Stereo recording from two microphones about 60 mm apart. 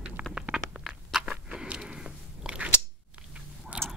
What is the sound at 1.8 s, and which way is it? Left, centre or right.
Biting, centre.